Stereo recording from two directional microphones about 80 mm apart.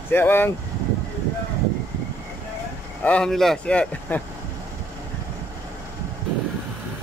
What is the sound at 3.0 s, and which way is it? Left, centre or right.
Speech, centre.